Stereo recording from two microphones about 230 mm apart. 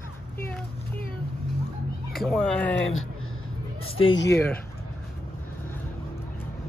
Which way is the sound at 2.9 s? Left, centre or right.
Left.